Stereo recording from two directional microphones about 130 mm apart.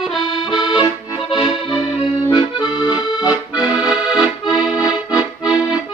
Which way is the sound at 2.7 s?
30° left (ahead or behind).